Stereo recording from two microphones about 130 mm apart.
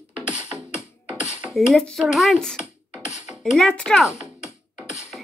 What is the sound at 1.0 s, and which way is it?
Music, 10° right (ahead or behind).